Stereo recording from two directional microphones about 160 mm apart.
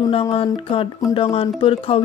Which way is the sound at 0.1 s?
35° left (ahead or behind).